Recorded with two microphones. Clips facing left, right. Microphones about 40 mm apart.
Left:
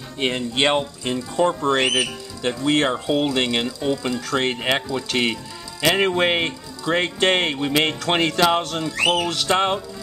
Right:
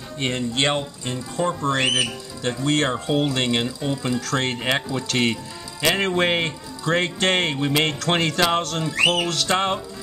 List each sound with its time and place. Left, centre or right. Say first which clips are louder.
0.2 s speech: left 2 dB; centre
4.2 s speech: left 2 dB; centre
8.8 s speech: right 3 dB; centre
9.1 s speech: left 1 dB; centre